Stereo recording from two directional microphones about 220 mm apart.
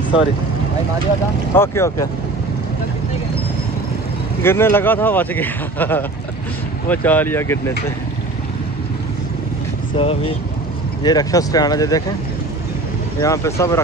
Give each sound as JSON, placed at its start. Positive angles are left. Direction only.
{"t": 1.5, "sound": "speech", "side_deg": 10}
{"t": 4.4, "sound": "speech", "side_deg": 10}
{"t": 9.9, "sound": "speech", "side_deg": 25}
{"t": 13.2, "sound": "speech", "side_deg": 15}